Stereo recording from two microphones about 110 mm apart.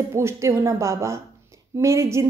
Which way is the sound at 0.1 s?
25° right (ahead or behind).